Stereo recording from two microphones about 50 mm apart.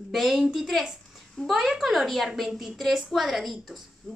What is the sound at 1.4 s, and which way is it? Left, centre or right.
Speech, centre.